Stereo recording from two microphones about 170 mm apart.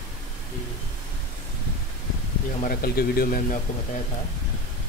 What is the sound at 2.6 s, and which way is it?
Speech, 60° left (ahead or behind).